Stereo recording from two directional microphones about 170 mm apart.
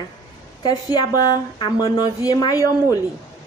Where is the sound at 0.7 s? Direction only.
20° left (ahead or behind).